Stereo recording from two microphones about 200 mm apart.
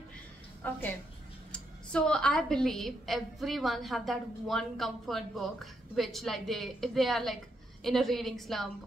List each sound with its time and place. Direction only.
0.6 s a woman's voice: 10° left (ahead or behind)